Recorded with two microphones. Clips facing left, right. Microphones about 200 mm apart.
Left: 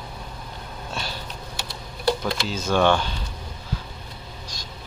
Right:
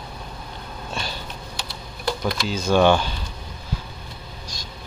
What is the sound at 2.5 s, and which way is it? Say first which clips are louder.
Speech: right 3 dB; centre (ahead or behind).